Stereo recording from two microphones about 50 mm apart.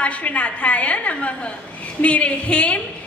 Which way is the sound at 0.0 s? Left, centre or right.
Left.